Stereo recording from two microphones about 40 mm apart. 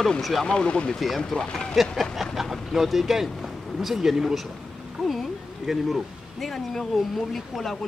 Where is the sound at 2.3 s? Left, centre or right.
Centre.